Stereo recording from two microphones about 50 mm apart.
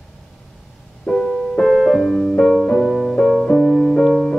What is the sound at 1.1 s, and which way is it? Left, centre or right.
Music, centre.